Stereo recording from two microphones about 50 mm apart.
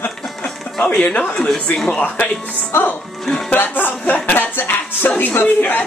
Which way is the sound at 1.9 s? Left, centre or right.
Left.